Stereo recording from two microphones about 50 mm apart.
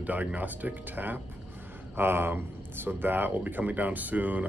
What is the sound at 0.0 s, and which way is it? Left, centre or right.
Speech, right.